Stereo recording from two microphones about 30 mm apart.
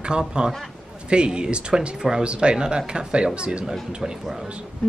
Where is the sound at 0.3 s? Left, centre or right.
Right.